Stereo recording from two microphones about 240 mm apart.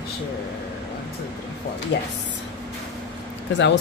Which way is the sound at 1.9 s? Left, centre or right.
Left.